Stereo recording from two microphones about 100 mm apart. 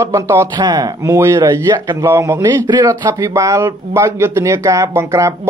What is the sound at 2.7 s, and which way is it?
A man's voice, 45° right (ahead or behind).